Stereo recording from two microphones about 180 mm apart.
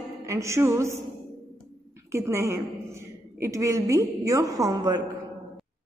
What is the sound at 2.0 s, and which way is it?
A woman's voice, 15° right (ahead or behind).